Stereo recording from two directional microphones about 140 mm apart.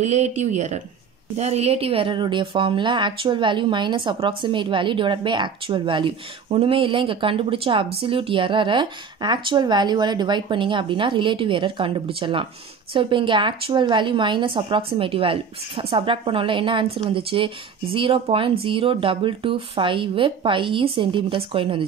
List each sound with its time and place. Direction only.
0.0 s speech: 55° right (ahead or behind); by 21.8 s 40° right (ahead or behind)